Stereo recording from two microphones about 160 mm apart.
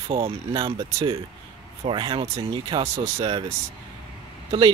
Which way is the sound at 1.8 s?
30° right (ahead or behind).